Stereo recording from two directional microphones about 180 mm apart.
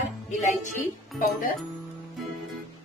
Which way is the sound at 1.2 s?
45° left (ahead or behind).